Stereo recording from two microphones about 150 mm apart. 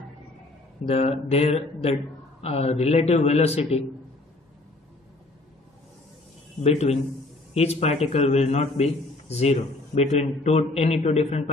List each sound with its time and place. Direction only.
1.0 s a man's voice: 45° left (ahead or behind)
6.6 s a man's voice: 45° left (ahead or behind)